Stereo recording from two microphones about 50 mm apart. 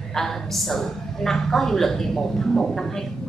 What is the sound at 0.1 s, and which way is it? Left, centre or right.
A woman's voice, centre.